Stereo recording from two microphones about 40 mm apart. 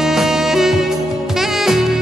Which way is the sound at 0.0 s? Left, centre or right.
Centre.